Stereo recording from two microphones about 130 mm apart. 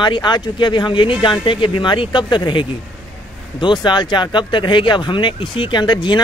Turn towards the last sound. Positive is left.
turn(degrees=35)  # may be behind; listen again after turning